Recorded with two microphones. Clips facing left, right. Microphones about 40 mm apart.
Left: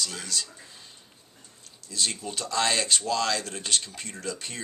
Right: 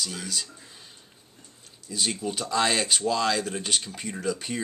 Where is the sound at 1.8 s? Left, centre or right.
Centre.